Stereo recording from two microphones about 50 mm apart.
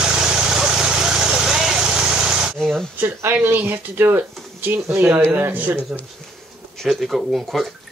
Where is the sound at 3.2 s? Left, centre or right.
Right.